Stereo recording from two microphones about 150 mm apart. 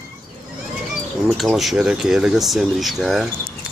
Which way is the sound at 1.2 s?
Centre (ahead or behind).